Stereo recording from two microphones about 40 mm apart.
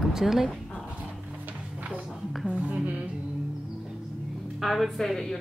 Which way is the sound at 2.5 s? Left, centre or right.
Right.